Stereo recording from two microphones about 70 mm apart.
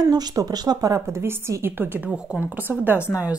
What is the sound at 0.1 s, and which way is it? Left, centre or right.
Speech, right.